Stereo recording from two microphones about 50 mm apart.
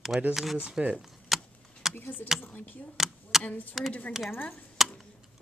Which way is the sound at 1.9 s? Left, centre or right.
Left.